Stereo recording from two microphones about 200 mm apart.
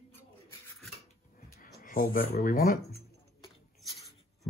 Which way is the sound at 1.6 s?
45° left (ahead or behind).